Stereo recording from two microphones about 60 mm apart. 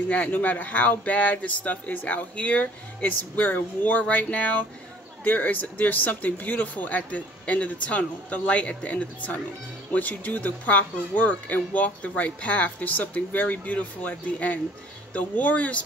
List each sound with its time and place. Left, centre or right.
0.1 s speech: left